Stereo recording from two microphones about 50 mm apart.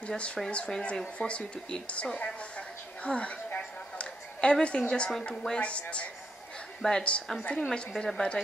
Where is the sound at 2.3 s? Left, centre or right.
Left.